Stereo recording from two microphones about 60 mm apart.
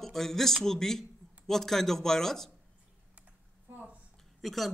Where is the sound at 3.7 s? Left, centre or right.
Right.